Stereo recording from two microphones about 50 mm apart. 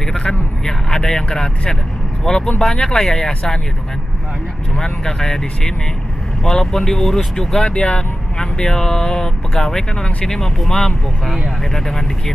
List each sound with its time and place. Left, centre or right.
0.0 s vehicle: centre
2.2 s speech: centre
4.7 s speech: centre